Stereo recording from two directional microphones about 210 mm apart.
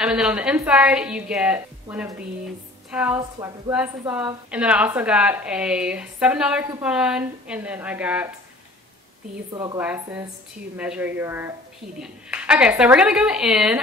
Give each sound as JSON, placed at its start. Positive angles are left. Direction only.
{"t": 0.0, "sound": "a woman's voice", "side_deg": -5}
{"t": 9.5, "sound": "a woman's voice", "side_deg": -20}
{"t": 9.8, "sound": "a woman's voice", "side_deg": -10}